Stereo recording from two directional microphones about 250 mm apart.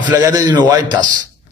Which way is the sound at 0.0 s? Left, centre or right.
Centre.